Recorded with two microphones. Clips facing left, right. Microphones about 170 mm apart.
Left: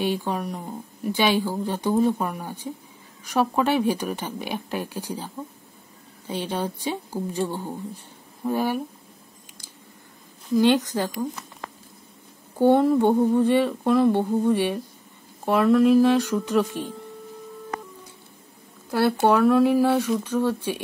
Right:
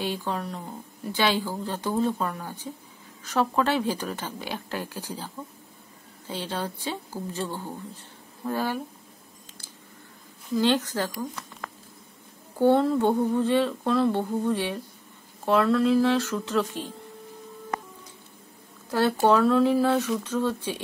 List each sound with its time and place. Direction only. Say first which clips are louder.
0.0 s speech: left 4 dB; 15° left (ahead or behind)
10.5 s speech: left 4 dB; 15° left (ahead or behind)
18.9 s speech: left 1 dB; 10° left (ahead or behind)